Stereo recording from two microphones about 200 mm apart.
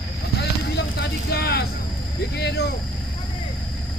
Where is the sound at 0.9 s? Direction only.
55° left (ahead or behind).